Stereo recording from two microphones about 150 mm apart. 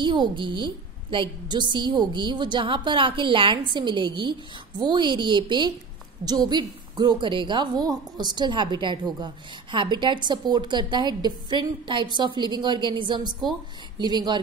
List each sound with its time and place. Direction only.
0.0 s a woman's voice: 30° right (ahead or behind)